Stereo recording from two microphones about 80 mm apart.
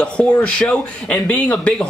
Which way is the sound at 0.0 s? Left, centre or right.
Centre.